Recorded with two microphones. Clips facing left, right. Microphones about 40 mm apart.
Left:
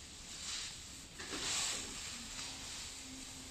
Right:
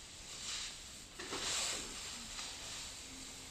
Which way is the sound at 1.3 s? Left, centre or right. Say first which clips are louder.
Even; right.